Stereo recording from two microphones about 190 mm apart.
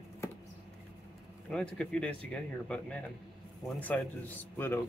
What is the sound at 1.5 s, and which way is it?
Speech, 5° left (ahead or behind).